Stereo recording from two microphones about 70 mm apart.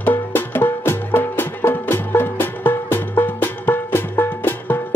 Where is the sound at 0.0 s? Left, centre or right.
Left.